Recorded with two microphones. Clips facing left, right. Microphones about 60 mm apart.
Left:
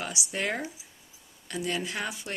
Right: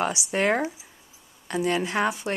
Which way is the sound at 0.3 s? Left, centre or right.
Right.